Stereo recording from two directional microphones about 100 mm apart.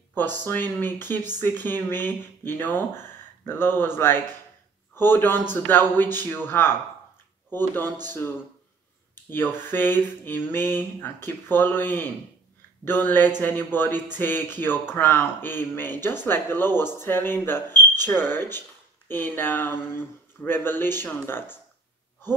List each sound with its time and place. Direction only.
0.5 s speech: 20° left (ahead or behind)